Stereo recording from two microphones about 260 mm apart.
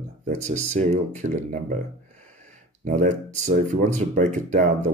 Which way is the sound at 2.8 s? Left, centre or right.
Right.